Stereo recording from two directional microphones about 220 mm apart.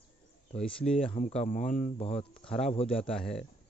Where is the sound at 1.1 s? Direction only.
35° left (ahead or behind).